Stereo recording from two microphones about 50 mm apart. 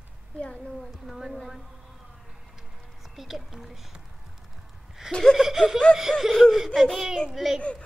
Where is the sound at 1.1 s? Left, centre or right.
Centre.